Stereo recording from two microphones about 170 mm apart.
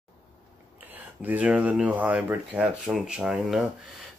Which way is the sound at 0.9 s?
10° right (ahead or behind).